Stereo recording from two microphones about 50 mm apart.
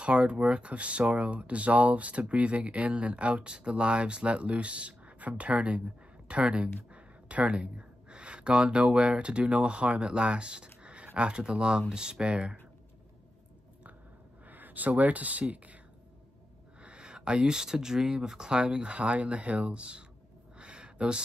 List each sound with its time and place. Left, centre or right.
0.0 s speech: centre
14.5 s speech: right
16.8 s speech: centre
20.5 s a sound: right